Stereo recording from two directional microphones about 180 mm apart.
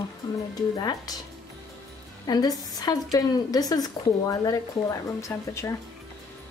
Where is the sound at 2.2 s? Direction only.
20° left (ahead or behind).